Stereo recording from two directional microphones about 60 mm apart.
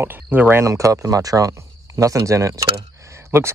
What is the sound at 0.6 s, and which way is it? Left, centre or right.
Speech, right.